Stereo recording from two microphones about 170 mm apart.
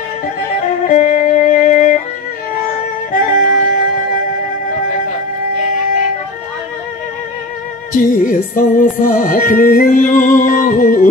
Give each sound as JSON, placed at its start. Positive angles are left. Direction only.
{"t": 0.8, "sound": "music", "side_deg": 50}
{"t": 3.1, "sound": "music", "side_deg": 55}
{"t": 7.9, "sound": "music", "side_deg": 50}